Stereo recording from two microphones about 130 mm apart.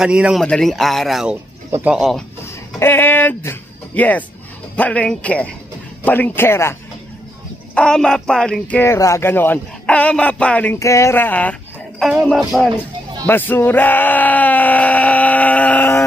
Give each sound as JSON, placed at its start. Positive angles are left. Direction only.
{"t": 0.0, "sound": "speech", "side_deg": -5}
{"t": 0.4, "sound": "speech", "side_deg": 5}
{"t": 2.4, "sound": "speech", "side_deg": 20}
{"t": 7.7, "sound": "speech", "side_deg": 5}
{"t": 10.8, "sound": "speech", "side_deg": 25}
{"t": 12.0, "sound": "speech", "side_deg": 0}
{"t": 13.3, "sound": "speech", "side_deg": 15}